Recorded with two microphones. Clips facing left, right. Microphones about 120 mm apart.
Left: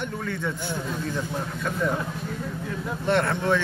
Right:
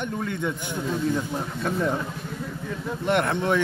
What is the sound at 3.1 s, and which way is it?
Speech, 20° right (ahead or behind).